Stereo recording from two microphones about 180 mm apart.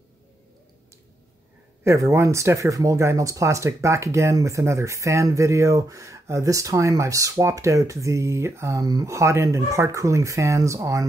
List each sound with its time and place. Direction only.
1.9 s speech: 15° right (ahead or behind)